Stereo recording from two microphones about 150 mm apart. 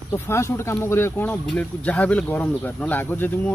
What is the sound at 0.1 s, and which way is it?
Speech, 15° left (ahead or behind).